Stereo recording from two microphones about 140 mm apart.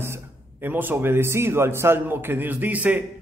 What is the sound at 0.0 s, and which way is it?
A man's voice, 15° right (ahead or behind).